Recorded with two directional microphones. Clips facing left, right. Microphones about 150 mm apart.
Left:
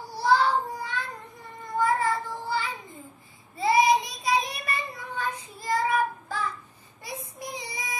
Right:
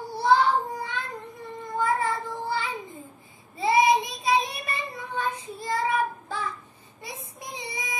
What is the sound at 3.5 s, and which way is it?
Child singing, 20° right (ahead or behind).